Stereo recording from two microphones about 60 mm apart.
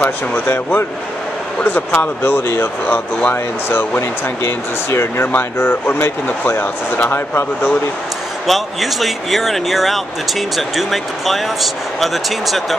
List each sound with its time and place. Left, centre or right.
0.0 s speech: left
8.5 s speech: centre